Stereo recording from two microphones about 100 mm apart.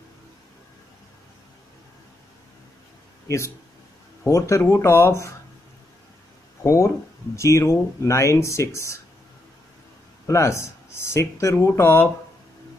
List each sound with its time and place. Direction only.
3.3 s speech: 30° left (ahead or behind)
6.6 s speech: 35° left (ahead or behind)
10.2 s speech: 30° left (ahead or behind)